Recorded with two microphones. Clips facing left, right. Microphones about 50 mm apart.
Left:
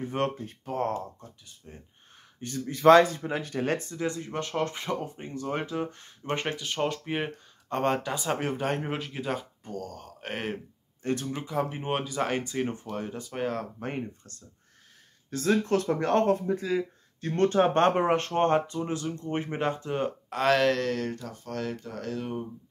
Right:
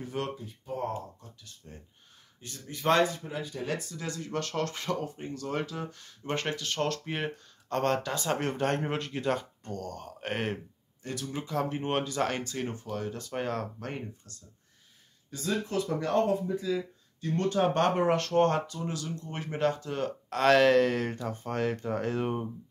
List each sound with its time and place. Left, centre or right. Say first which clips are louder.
0.0 s speech: left 6 dB; left
0.3 s speech: left 3 dB; left
1.4 s speech: left 1 dB; centre
2.7 s a man's voice: left 8 dB; left
3.3 s speech: left 5 dB; left
3.9 s speech: left 3 dB; left
6.2 s speech: left 1 dB; centre
11.0 s speech: left 5 dB; left
11.4 s speech: right 1 dB; centre
13.3 s speech: left 2 dB; centre
13.7 s speech: left 4 dB; left
15.2 s speech: left 6 dB; left
20.2 s speech: right 2 dB; centre
21.3 s speech: right 3 dB; right